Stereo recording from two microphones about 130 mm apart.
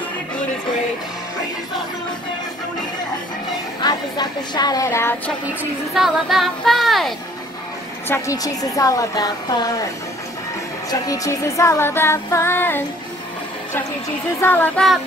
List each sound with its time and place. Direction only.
3.8 s speech: 30° left (ahead or behind)
5.9 s speech: centre (ahead or behind)
8.1 s music: 25° left (ahead or behind)
10.9 s music: 25° left (ahead or behind)
14.4 s child singing: 15° left (ahead or behind)